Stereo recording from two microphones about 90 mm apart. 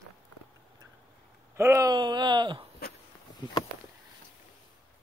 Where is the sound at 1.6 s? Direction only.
35° right (ahead or behind).